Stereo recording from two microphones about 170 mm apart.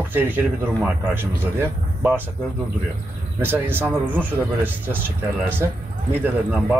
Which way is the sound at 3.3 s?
10° right (ahead or behind).